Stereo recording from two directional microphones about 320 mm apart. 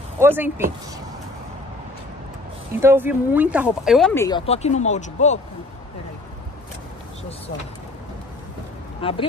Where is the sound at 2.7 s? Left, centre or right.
Centre; by 5.4 s left.